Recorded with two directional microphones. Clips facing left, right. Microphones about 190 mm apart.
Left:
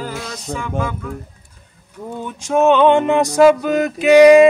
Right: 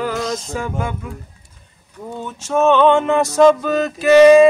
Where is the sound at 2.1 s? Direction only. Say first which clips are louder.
Left 2 dB; 15° left (ahead or behind).